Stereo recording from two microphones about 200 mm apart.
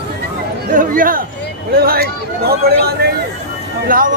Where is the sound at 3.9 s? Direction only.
45° right (ahead or behind).